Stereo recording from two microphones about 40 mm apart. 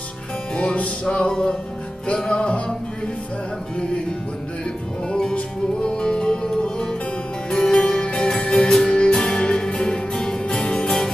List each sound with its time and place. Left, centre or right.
0.6 s music: left
5.9 s music: left